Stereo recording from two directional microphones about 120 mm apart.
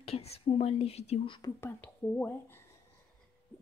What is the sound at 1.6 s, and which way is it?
Speech, 20° left (ahead or behind).